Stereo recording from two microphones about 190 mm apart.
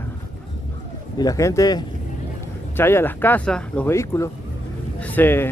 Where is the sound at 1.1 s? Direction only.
20° left (ahead or behind).